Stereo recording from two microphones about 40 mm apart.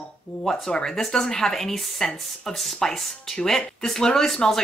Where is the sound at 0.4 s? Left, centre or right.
Centre.